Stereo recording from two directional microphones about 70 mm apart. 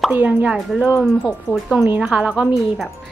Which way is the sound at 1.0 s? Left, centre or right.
Centre.